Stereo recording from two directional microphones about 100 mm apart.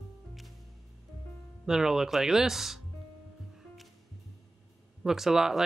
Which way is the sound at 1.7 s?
5° right (ahead or behind).